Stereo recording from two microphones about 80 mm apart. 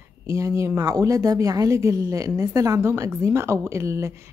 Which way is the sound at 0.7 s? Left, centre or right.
Right.